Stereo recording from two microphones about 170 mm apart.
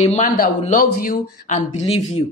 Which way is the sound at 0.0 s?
40° left (ahead or behind).